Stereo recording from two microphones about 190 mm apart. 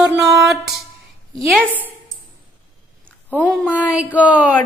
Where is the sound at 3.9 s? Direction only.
5° right (ahead or behind).